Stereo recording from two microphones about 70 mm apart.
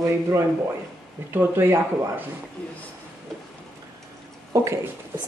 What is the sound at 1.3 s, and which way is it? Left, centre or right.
Speech, right.